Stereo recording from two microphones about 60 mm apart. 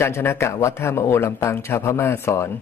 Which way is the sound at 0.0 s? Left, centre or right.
Left.